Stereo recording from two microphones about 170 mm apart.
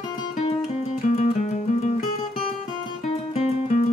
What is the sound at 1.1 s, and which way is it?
Music, 45° left (ahead or behind).